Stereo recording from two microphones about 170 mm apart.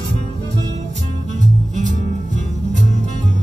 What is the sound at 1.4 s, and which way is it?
Music, 45° right (ahead or behind).